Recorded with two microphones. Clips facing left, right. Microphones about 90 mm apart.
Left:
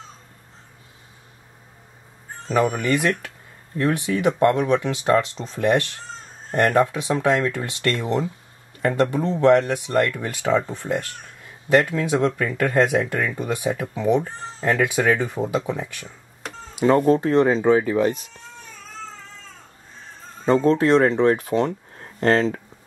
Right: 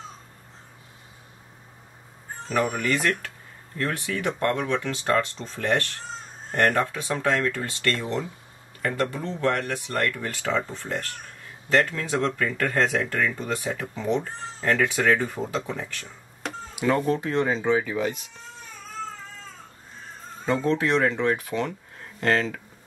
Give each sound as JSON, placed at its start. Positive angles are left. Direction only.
{"t": 2.5, "sound": "speech", "side_deg": 15}
{"t": 16.8, "sound": "speech", "side_deg": 35}
{"t": 20.4, "sound": "speech", "side_deg": 35}